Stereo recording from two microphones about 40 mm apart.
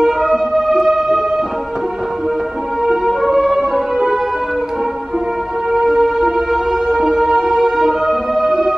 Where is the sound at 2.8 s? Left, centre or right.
Centre.